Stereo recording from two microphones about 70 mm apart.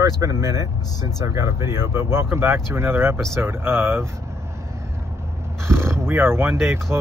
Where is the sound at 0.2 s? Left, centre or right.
Right.